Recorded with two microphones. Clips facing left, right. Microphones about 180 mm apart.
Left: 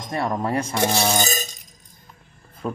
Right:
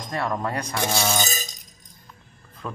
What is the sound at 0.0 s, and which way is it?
Speech, 25° left (ahead or behind).